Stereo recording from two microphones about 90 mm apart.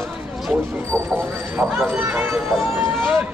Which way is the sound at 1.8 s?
25° right (ahead or behind).